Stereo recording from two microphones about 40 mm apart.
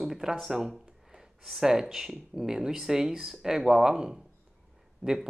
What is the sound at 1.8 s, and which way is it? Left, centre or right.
Speech, centre.